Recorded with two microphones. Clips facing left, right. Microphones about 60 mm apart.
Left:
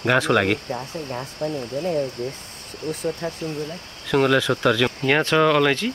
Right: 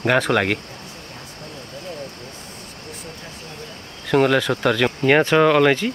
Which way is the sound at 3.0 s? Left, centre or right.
Left.